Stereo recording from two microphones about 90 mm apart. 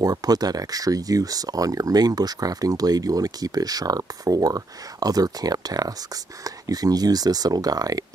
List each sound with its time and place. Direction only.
0.0 s speech: 45° right (ahead or behind)